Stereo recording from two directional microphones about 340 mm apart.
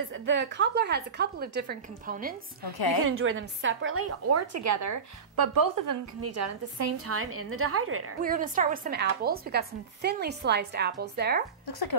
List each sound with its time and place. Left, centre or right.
0.1 s speech: right
3.1 s a woman's voice: right
5.3 s a woman's voice: right
6.2 s a woman's voice: right
8.2 s speech: right